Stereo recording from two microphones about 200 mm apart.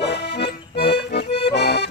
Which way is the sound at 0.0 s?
60° left (ahead or behind).